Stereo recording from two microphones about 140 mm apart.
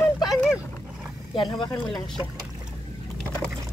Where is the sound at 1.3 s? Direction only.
35° left (ahead or behind).